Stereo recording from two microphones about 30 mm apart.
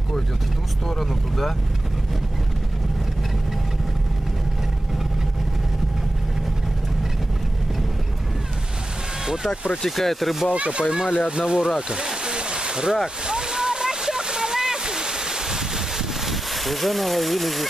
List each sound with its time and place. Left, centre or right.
0.8 s speech: centre
9.2 s vehicle: right
9.8 s speech: centre
10.5 s speech: right
12.3 s a sound: right
13.3 s splash: right
16.3 s speech: centre